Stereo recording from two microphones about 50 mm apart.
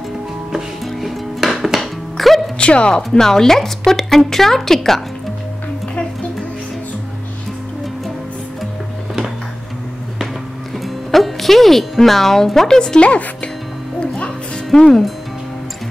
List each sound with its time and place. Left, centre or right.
0.5 s music: centre
2.6 s speech: left
3.0 s a woman's voice: centre
11.1 s speech: centre
13.9 s music: left
14.7 s a woman's voice: centre